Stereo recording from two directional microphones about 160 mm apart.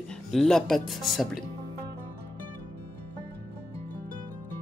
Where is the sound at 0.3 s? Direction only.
Centre (ahead or behind).